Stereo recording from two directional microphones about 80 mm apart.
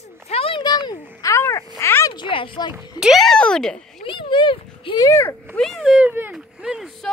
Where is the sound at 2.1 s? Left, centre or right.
Left.